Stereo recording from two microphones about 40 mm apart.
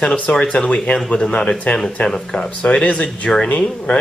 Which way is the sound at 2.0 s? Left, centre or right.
Centre.